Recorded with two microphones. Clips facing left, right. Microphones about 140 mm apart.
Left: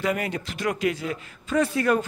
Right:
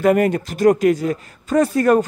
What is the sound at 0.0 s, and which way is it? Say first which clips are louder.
A man's voice: right 11 dB; 50° right (ahead or behind).